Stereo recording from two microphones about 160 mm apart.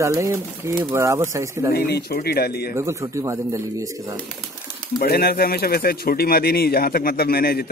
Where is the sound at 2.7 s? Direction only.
15° right (ahead or behind).